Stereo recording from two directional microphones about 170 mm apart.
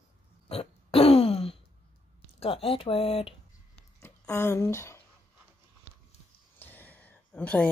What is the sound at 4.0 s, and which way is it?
Speech, 15° left (ahead or behind).